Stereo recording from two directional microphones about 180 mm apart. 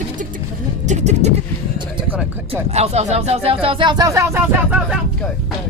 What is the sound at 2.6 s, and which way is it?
Speech, 35° right (ahead or behind).